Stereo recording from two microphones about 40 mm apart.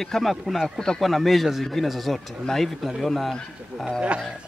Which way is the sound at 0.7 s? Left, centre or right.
Centre.